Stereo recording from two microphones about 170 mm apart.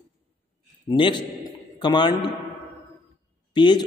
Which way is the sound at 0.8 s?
30° left (ahead or behind).